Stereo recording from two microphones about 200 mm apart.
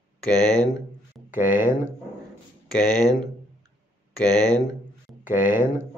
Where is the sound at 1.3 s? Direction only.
40° left (ahead or behind).